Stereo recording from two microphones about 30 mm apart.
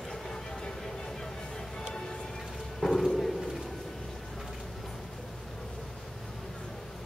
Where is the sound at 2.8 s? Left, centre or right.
Centre.